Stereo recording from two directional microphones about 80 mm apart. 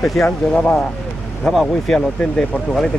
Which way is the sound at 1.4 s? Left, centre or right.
Centre.